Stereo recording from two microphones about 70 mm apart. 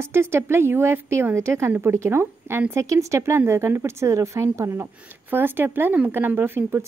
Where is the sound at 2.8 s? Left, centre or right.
Right.